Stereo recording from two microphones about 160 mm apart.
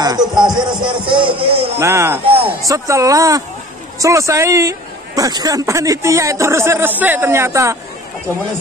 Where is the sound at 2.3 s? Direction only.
35° right (ahead or behind).